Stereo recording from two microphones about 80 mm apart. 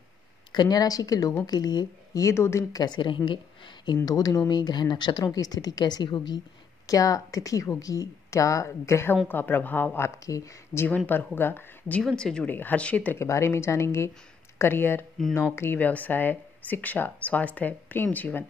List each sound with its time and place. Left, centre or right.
0.5 s a woman's voice: left
2.1 s speech: left
2.7 s a woman's voice: left
4.5 s a woman's voice: left
6.9 s speech: left
9.3 s speech: left
10.0 s speech: left
11.3 s speech: left
12.0 s speech: centre
12.4 s speech: left
13.2 s speech: left
15.8 s speech: left